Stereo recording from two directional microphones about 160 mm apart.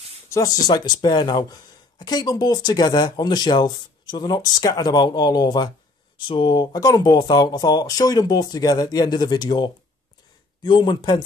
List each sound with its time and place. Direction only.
0.3 s speech: 20° left (ahead or behind)